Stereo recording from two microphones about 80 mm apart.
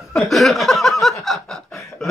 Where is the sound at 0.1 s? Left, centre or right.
Centre.